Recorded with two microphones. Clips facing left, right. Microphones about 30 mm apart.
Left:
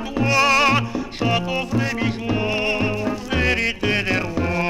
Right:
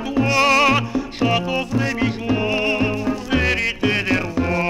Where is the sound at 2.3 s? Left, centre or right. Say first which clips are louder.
Right 1 dB; centre.